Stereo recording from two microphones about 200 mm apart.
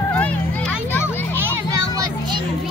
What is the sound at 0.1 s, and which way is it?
Children playing, 5° left (ahead or behind).